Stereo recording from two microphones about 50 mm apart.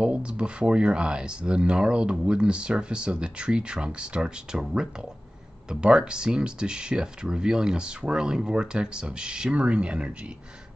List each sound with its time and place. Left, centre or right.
0.0 s speech: right